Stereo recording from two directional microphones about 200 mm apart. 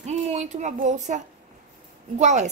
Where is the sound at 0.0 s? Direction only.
35° right (ahead or behind).